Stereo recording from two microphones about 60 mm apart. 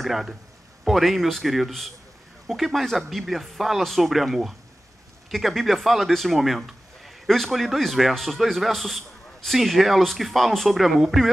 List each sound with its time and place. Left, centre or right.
0.0 s speech: centre